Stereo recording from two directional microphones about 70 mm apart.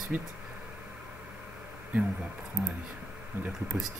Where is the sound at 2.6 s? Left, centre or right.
Right.